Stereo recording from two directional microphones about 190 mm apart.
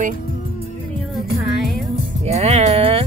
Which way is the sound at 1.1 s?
Centre (ahead or behind).